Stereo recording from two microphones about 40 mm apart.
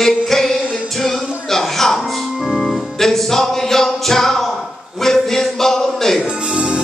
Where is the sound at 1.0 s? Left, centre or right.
Centre.